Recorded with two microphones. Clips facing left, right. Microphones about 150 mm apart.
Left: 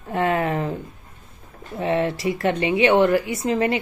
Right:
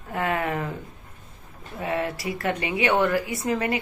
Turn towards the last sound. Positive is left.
turn(degrees=25)  # may be behind; listen again after turning